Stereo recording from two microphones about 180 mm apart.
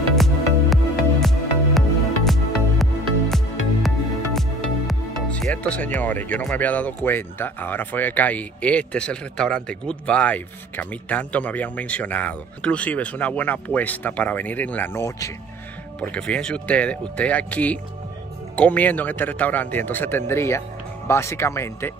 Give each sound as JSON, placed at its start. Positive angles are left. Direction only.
{"t": 0.1, "sound": "music", "side_deg": 0}
{"t": 5.9, "sound": "speech", "side_deg": 10}
{"t": 16.0, "sound": "speech", "side_deg": 5}